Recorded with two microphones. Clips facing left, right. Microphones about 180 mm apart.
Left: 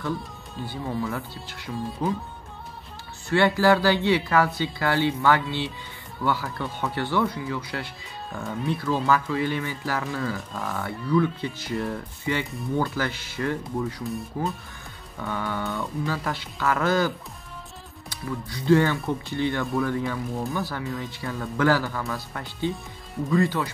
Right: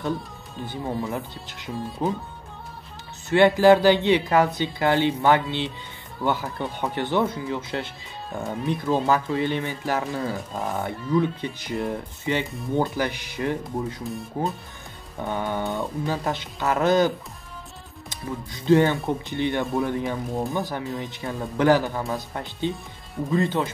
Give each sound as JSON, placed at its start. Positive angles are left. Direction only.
{"t": 0.7, "sound": "speech", "side_deg": -20}
{"t": 3.3, "sound": "speech", "side_deg": -20}
{"t": 10.3, "sound": "speech", "side_deg": -35}
{"t": 10.8, "sound": "speech", "side_deg": -20}
{"t": 18.1, "sound": "speech", "side_deg": -20}